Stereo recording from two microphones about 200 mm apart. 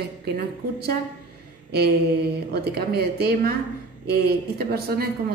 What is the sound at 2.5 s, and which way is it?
Speech, 50° right (ahead or behind).